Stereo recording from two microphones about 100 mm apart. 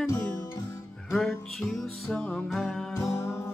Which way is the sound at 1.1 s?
Centre (ahead or behind).